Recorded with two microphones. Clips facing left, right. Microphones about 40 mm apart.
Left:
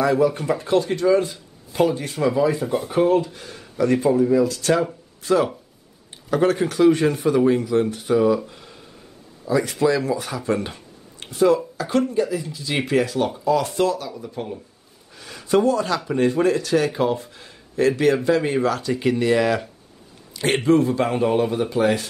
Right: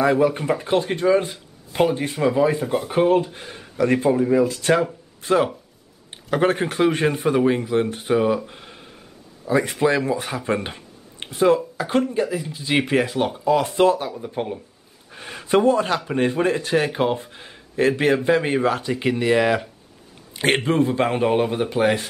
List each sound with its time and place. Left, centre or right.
0.0 s speech: right
2.6 s speech: centre
2.9 s a man's voice: right
8.5 s a sound: right
9.5 s speech: right
20.3 s speech: right